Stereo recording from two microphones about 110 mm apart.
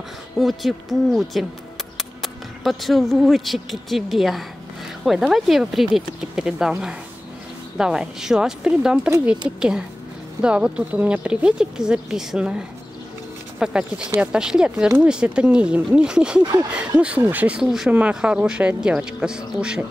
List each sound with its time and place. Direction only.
0.4 s speech: centre (ahead or behind)